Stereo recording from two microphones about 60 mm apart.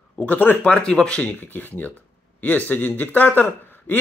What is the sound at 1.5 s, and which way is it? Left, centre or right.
Speech, left.